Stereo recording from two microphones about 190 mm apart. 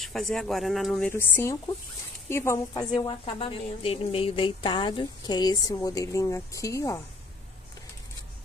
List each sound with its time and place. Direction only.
0.0 s a woman's voice: centre (ahead or behind)